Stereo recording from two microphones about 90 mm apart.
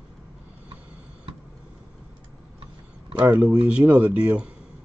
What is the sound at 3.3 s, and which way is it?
Speech, 15° right (ahead or behind).